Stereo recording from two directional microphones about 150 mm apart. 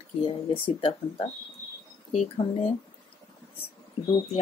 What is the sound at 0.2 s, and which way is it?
Speech, 40° left (ahead or behind).